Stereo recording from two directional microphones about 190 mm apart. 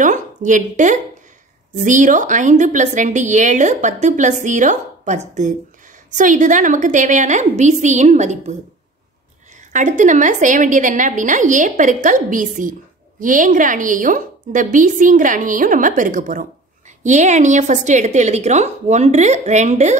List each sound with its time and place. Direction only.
0.0 s a sound: 40° right (ahead or behind)
1.8 s a woman's voice: 40° right (ahead or behind)
9.7 s a woman's voice: 40° right (ahead or behind)